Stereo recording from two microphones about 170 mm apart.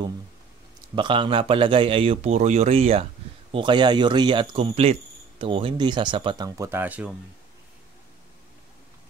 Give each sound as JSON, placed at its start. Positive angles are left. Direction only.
{"t": 0.9, "sound": "a man's voice", "side_deg": -30}